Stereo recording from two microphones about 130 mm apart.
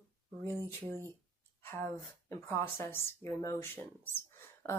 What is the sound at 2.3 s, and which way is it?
Speech, 25° left (ahead or behind).